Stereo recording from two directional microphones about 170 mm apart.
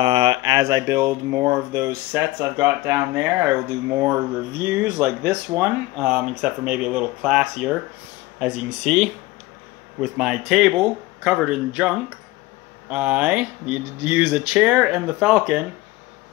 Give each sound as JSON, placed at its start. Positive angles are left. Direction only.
{"t": 0.0, "sound": "speech", "side_deg": -30}